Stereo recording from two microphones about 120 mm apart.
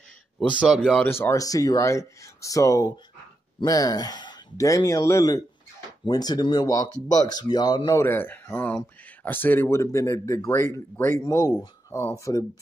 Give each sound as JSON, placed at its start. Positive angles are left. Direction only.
{"t": 0.6, "sound": "speech", "side_deg": 0}
{"t": 1.2, "sound": "speech", "side_deg": 30}
{"t": 8.0, "sound": "speech", "side_deg": 20}